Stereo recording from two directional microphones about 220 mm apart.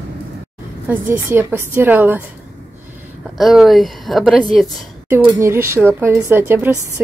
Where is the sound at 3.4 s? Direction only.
Centre (ahead or behind).